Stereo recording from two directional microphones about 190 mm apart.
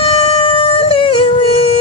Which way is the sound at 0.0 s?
30° left (ahead or behind).